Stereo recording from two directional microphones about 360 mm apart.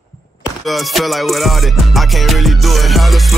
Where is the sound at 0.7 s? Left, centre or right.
Centre.